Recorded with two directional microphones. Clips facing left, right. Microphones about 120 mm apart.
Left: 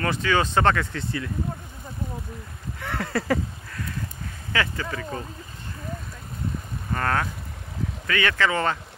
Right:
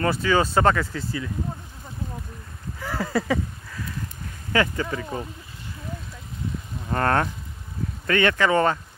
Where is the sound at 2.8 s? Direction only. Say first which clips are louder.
Right 2 dB; 5° right (ahead or behind).